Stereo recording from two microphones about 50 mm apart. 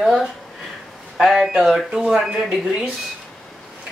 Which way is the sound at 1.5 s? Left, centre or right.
Centre.